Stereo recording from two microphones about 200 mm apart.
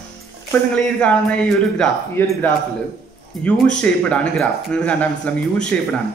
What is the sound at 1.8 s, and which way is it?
A man's voice, 10° left (ahead or behind).